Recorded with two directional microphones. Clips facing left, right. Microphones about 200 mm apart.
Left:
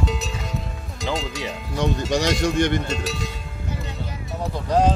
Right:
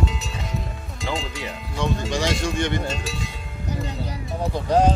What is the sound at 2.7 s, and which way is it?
Speech, 65° left (ahead or behind).